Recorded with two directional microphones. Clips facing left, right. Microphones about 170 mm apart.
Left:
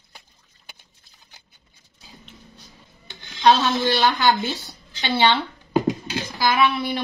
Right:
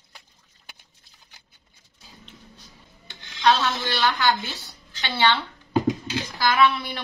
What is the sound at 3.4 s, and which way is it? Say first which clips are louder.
A woman's voice: left 4 dB; 20° left (ahead or behind).